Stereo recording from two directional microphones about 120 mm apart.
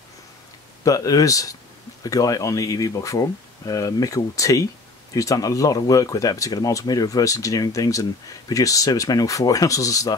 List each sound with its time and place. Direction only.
0.8 s speech: 30° left (ahead or behind)